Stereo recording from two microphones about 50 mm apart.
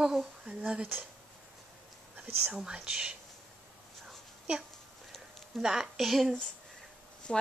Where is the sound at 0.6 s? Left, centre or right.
Right.